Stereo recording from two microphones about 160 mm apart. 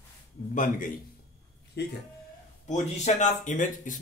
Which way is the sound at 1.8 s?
90° left.